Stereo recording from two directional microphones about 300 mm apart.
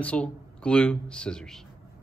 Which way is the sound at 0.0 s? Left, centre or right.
Centre.